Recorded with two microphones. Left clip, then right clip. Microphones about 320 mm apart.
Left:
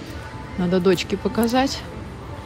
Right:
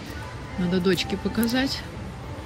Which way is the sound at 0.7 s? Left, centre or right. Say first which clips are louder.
Left 5 dB; centre.